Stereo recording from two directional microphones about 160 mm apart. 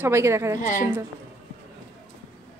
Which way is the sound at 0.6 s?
55° left (ahead or behind).